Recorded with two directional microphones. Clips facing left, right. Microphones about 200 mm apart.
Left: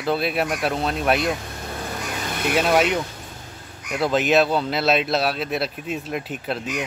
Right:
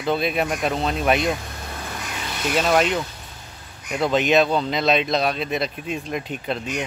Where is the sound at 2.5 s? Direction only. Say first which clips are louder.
Even; 10° left (ahead or behind).